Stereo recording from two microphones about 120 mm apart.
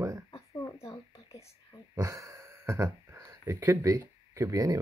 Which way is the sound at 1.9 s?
25° right (ahead or behind).